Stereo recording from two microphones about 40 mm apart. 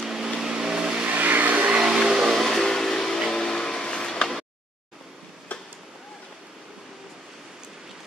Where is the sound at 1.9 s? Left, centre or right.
Centre.